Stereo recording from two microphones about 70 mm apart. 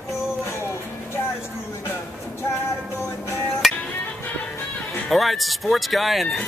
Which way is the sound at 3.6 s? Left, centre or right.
Centre.